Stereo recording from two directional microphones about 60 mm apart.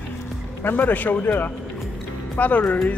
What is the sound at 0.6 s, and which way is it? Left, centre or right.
A man's voice, left.